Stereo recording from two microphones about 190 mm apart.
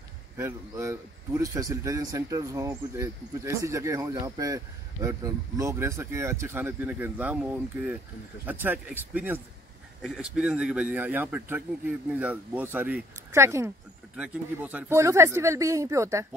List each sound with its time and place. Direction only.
0.4 s a man's voice: 15° right (ahead or behind)